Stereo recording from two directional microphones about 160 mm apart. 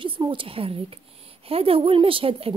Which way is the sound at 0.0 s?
30° right (ahead or behind).